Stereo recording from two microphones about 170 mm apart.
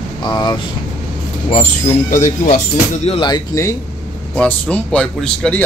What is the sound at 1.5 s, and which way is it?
Speech, 45° left (ahead or behind).